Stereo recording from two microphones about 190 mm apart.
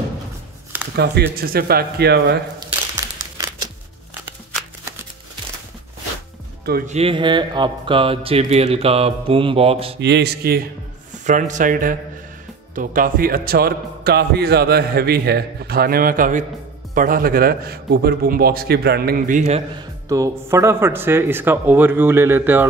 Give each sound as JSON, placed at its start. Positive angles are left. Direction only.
{"t": 0.9, "sound": "speech", "side_deg": -60}
{"t": 2.7, "sound": "crumpling", "side_deg": -20}
{"t": 6.9, "sound": "music", "side_deg": -30}
{"t": 9.9, "sound": "speech", "side_deg": -65}
{"t": 11.2, "sound": "a man's voice", "side_deg": -40}
{"t": 20.1, "sound": "speech", "side_deg": -15}